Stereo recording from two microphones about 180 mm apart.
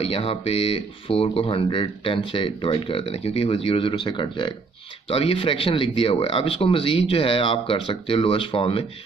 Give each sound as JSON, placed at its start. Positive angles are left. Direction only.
{"t": 0.0, "sound": "speech", "side_deg": 35}